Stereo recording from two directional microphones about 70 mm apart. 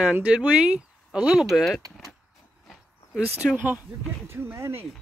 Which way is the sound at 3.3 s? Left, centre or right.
Right.